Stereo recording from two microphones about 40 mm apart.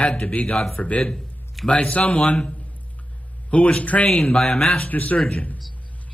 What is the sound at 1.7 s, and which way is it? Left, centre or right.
A man's voice, left.